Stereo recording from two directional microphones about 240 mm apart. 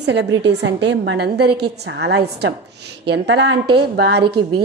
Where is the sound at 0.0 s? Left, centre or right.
Right.